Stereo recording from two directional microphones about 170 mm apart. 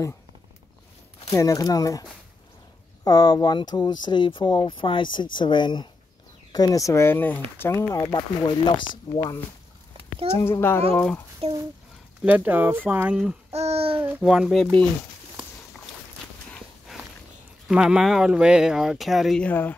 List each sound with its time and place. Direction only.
1.3 s speech: 20° left (ahead or behind)
12.3 s speech: 10° right (ahead or behind)
13.5 s a child's voice: 40° right (ahead or behind)
13.9 s speech: 10° right (ahead or behind)
17.6 s speech: 5° right (ahead or behind)